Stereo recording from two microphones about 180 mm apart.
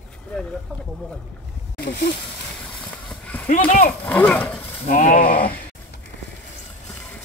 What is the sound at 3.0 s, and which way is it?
Clip-clop, 5° left (ahead or behind).